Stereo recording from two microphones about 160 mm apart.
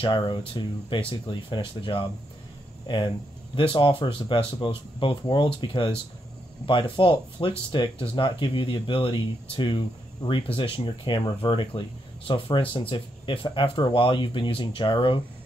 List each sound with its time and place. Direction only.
0.0 s speech: 30° left (ahead or behind)
3.5 s speech: 30° left (ahead or behind)